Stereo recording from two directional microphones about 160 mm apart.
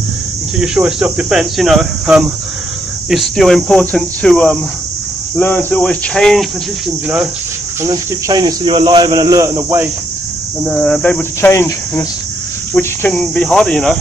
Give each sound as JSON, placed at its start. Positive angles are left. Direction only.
{"t": 0.6, "sound": "cricket", "side_deg": -5}
{"t": 5.4, "sound": "speech", "side_deg": 10}
{"t": 7.8, "sound": "speech", "side_deg": -25}
{"t": 10.6, "sound": "speech", "side_deg": 0}
{"t": 12.7, "sound": "cricket", "side_deg": 10}